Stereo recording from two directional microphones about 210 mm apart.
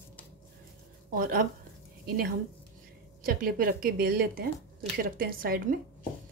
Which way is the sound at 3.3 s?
45° right (ahead or behind).